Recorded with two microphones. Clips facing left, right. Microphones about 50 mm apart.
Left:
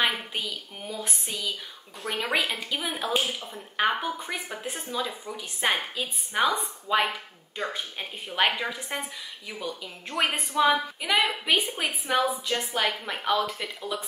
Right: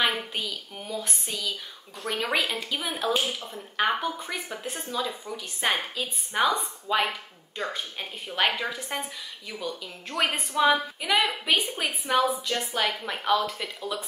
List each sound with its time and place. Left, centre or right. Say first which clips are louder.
0.0 s a woman's voice: even; centre
8.7 s a woman's voice: right 1 dB; centre
10.6 s a woman's voice: even; centre